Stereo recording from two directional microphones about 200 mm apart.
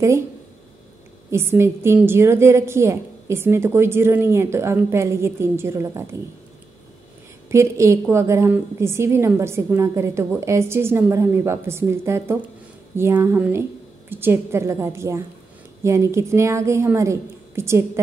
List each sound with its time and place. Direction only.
1.3 s a woman's voice: 10° right (ahead or behind)
7.4 s a woman's voice: 15° right (ahead or behind)